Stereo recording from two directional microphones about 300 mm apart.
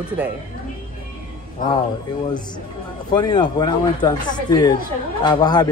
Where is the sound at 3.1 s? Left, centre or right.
Centre.